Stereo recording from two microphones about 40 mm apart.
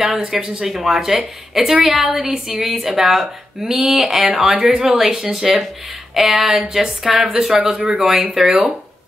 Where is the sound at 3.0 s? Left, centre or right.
Centre.